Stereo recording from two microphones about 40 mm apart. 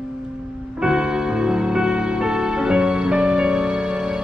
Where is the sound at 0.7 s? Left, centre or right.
Right.